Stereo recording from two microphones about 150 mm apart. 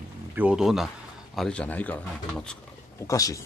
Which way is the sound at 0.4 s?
5° right (ahead or behind).